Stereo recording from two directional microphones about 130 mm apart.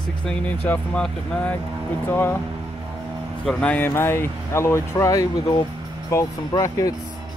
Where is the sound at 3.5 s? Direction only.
10° left (ahead or behind); by 6.9 s 25° left (ahead or behind).